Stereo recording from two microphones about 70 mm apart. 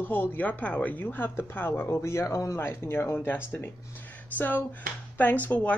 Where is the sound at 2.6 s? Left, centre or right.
Left.